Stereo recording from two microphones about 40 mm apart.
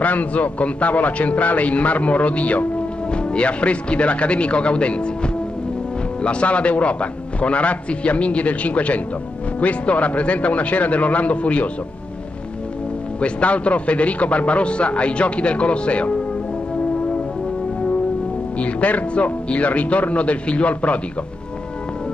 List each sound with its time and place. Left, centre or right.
0.0 s a man's voice: left
13.2 s a man's voice: left
18.6 s a man's voice: left